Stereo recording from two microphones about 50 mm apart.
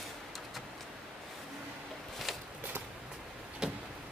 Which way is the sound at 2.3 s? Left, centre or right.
Centre.